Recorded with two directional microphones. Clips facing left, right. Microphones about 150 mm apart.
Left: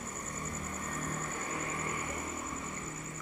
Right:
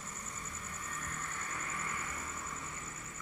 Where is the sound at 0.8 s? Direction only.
45° left (ahead or behind).